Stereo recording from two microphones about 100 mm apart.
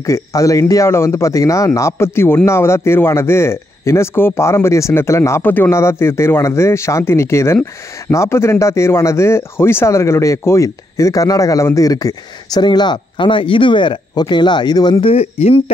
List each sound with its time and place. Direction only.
0.0 s speech: 30° left (ahead or behind)
15.0 s speech: 90° left